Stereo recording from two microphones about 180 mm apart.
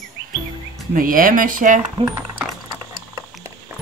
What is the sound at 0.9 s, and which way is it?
Speech, 50° right (ahead or behind).